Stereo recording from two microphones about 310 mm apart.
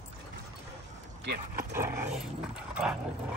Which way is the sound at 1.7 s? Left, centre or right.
Centre.